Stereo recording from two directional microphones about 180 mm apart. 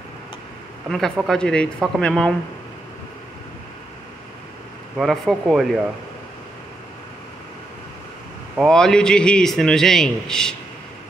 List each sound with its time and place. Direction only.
0.8 s speech: centre (ahead or behind)
4.9 s speech: centre (ahead or behind)
8.5 s speech: 5° left (ahead or behind)